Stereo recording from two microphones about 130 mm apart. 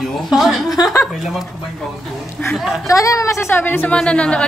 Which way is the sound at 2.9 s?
25° left (ahead or behind).